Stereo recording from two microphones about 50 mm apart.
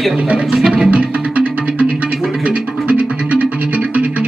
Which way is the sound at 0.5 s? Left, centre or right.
Centre.